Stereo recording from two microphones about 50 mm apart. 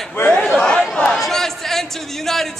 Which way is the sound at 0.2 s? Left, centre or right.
Left.